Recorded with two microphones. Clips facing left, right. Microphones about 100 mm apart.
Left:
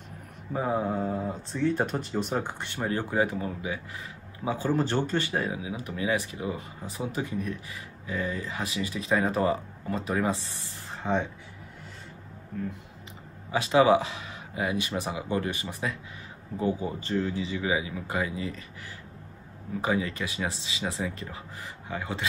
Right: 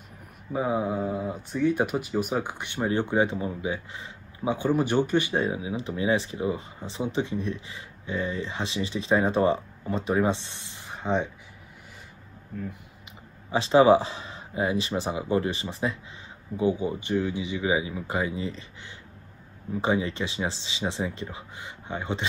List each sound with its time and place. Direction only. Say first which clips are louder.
0.5 s speech: right 1 dB; 10° right (ahead or behind)
13.5 s speech: right 3 dB; 30° right (ahead or behind)
19.8 s speech: right 2 dB; 25° right (ahead or behind)